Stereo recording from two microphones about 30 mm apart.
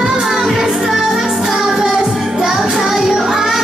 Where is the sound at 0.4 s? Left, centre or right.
Centre.